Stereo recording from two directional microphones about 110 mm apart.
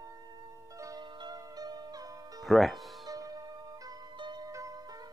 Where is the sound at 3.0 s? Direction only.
35° right (ahead or behind).